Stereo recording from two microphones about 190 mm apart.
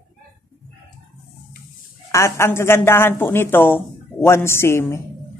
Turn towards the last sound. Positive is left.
turn(degrees=15)  # may be behind; listen again after turning